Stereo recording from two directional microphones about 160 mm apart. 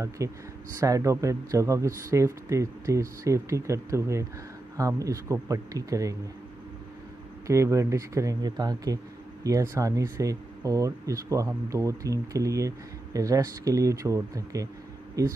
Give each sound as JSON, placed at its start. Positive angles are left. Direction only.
{"t": 0.2, "sound": "speech", "side_deg": -20}
{"t": 7.4, "sound": "speech", "side_deg": -20}